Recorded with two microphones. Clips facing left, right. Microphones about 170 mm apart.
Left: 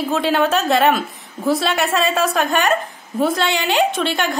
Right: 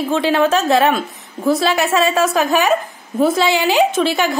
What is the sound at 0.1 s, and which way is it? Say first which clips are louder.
A woman's voice: right 3 dB; centre (ahead or behind).